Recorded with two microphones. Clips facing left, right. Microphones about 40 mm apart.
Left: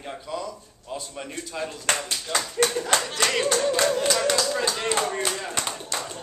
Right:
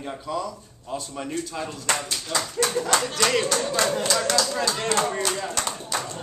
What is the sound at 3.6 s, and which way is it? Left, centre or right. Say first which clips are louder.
Speech: left 2 dB; centre.